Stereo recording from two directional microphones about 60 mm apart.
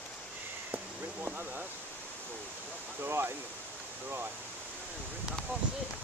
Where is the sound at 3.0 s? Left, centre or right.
Right.